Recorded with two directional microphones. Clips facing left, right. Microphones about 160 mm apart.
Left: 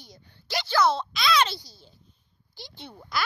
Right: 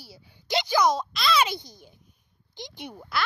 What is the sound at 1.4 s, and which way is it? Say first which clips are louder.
Speech: right 3 dB; 20° right (ahead or behind).